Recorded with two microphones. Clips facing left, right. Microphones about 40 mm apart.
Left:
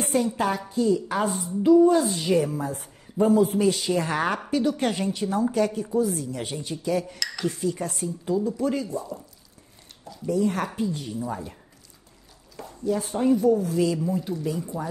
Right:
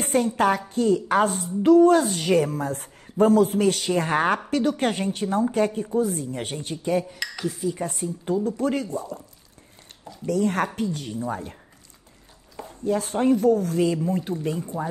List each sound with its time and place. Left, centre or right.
0.0 s a woman's voice: right
1.7 s a woman's voice: right
2.0 s a woman's voice: right
7.4 s speech: centre
8.3 s a woman's voice: right
10.2 s a woman's voice: right
11.1 s speech: right
12.8 s a woman's voice: right
14.0 s speech: right